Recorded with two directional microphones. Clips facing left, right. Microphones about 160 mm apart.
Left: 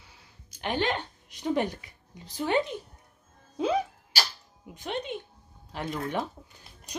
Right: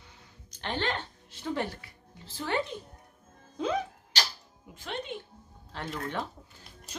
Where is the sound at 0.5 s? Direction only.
10° left (ahead or behind).